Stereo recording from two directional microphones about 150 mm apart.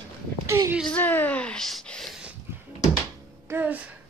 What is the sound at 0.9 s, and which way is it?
Speech, 10° left (ahead or behind).